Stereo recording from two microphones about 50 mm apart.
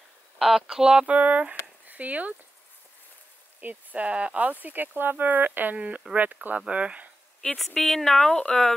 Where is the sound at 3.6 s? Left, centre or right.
Right.